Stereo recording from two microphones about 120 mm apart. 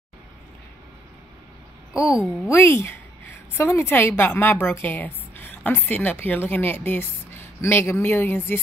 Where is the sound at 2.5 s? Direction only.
20° left (ahead or behind).